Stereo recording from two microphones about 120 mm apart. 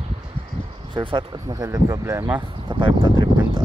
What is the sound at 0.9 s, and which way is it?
Speech, 45° right (ahead or behind).